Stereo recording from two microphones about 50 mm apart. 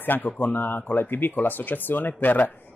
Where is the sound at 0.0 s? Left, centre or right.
Left.